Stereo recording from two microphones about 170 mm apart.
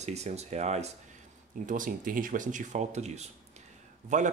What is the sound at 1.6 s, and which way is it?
A man's voice, 50° right (ahead or behind).